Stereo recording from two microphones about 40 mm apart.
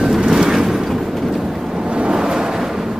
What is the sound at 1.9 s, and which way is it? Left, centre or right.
Waves, right.